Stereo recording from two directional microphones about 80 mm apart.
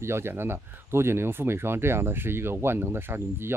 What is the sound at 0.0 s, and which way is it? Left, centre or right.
Speech, right.